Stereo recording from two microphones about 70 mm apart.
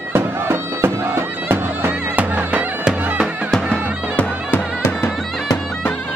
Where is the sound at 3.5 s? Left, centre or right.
Centre.